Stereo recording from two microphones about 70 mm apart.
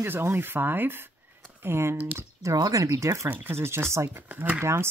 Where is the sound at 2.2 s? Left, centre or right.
Right.